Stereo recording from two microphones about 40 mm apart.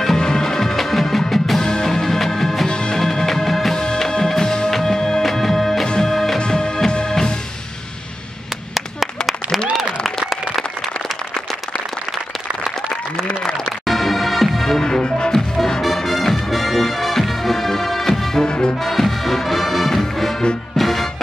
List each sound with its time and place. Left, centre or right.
0.0 s music: centre
1.6 s music: centre
2.7 s music: left
3.0 s music: centre
3.8 s music: centre
6.4 s music: left
8.7 s a sound: centre
9.7 s applause: centre
13.7 s music: centre; by 15.3 s left
15.3 s music: centre
18.4 s music: left
18.8 s music: centre